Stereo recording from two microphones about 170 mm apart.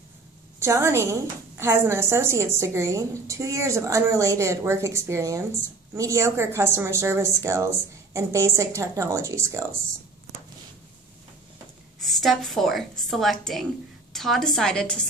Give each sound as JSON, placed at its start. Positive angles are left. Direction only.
{"t": 0.6, "sound": "a woman's voice", "side_deg": -15}
{"t": 12.2, "sound": "a woman's voice", "side_deg": 0}